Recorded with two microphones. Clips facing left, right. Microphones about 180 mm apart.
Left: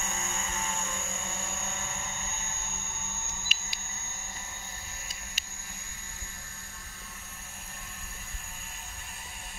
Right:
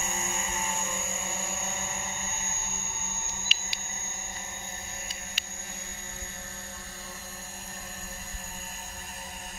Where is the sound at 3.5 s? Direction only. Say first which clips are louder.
Right 2 dB; 50° left (ahead or behind).